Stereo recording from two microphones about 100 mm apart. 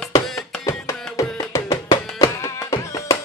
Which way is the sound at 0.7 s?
30° left (ahead or behind).